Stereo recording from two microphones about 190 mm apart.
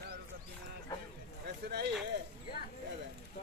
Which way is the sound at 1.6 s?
60° right (ahead or behind).